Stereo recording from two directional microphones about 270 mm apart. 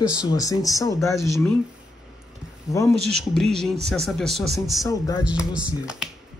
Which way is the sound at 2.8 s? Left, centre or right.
Centre.